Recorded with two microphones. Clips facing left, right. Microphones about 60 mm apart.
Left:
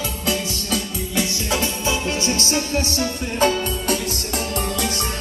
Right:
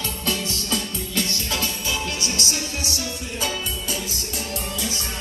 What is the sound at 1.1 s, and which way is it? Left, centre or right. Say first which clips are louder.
Music: left 4 dB; centre.